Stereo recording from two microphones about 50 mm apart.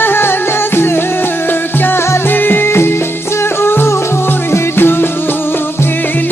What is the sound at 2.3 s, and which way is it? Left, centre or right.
Music, left.